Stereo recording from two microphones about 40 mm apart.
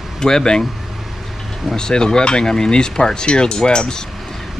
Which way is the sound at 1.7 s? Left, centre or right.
Centre.